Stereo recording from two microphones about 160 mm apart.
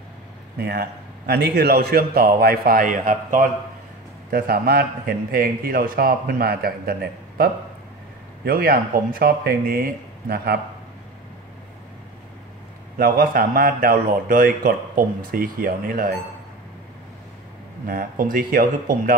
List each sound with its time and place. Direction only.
0.6 s a man's voice: 85° right; by 3.4 s 55° right (ahead or behind)
4.3 s a man's voice: 65° right (ahead or behind)
12.9 s speech: 65° right (ahead or behind)
17.8 s speech: 60° right (ahead or behind)